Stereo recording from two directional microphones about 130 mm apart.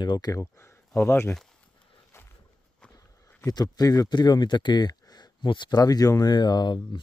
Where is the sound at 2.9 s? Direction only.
30° left (ahead or behind).